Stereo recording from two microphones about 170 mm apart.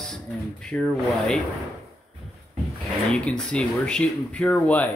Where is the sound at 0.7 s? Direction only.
10° left (ahead or behind).